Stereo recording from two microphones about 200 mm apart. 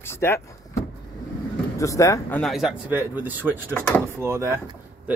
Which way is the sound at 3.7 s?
5° left (ahead or behind).